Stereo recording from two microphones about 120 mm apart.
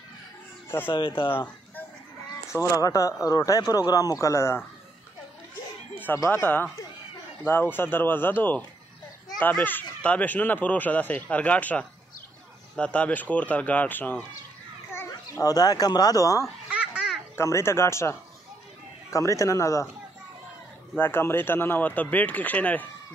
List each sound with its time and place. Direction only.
0.8 s speech: 45° left (ahead or behind)
2.5 s speech: 25° left (ahead or behind)
6.1 s speech: 25° left (ahead or behind)
6.4 s speech: 15° left (ahead or behind)
15.0 s speech: 25° left (ahead or behind)
16.7 s baby laughter: 10° right (ahead or behind)
17.4 s speech: 25° left (ahead or behind)
20.9 s speech: 20° left (ahead or behind)